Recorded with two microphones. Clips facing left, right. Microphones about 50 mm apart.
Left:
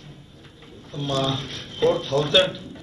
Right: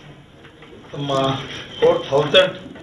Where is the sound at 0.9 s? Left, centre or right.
Right.